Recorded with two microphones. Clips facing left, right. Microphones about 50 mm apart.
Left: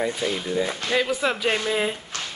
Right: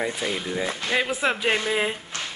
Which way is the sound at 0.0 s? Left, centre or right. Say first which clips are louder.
Left 2 dB; centre.